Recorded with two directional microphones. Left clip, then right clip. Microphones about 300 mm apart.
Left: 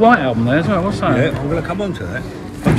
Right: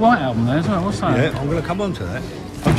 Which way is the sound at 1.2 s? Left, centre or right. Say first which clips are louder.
Left 3 dB; right.